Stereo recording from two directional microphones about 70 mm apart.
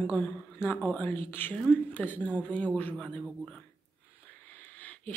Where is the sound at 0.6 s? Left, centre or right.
Left.